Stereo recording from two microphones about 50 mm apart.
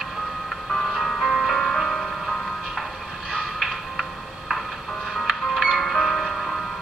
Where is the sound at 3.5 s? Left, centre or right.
Centre.